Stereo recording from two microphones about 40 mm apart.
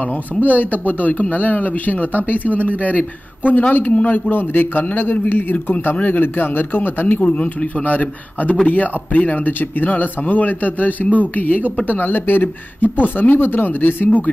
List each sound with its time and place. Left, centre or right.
0.4 s a man's voice: left
7.2 s speech: left
9.5 s speech: left
11.9 s speech: left